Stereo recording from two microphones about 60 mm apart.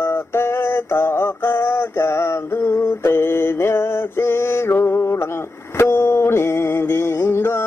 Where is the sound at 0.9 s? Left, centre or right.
Left.